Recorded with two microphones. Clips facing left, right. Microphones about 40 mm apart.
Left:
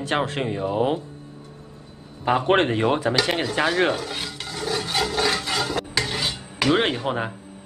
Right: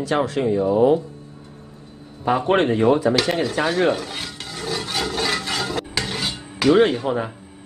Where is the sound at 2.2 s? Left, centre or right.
Left.